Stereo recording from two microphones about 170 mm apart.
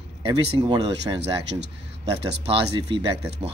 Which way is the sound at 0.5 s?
30° right (ahead or behind).